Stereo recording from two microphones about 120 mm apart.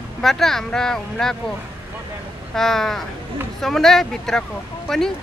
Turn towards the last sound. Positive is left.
turn(degrees=5)  # may be behind; listen again after turning